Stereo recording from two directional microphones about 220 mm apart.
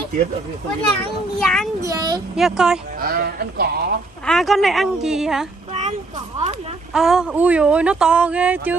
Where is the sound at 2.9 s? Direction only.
40° right (ahead or behind).